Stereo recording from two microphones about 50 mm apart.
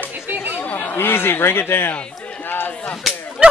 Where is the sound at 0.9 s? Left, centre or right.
Left.